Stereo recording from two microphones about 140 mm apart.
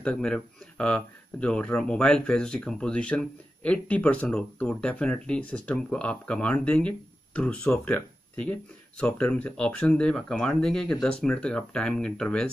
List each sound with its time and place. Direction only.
0.0 s speech: 5° left (ahead or behind)